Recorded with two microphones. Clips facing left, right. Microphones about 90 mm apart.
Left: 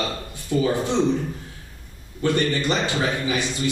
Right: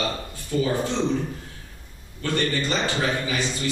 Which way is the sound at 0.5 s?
25° left (ahead or behind).